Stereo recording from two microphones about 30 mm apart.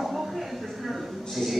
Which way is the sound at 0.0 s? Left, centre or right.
Centre.